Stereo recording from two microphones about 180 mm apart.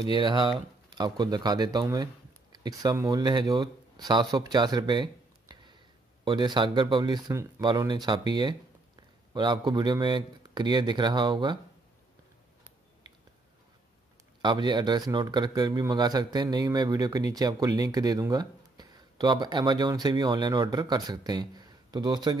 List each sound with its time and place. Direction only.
0.0 s speech: 25° right (ahead or behind)
14.4 s speech: 25° right (ahead or behind)